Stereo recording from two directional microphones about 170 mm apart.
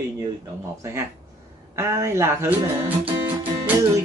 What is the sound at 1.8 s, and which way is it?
Speech, 15° right (ahead or behind).